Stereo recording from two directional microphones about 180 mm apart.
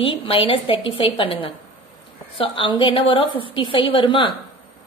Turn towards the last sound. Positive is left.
turn(degrees=25)  # may be behind; listen again after turning